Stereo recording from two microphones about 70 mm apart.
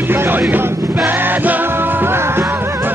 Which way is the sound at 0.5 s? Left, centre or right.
Right.